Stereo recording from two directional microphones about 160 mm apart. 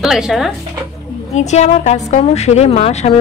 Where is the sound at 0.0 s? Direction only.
Centre (ahead or behind).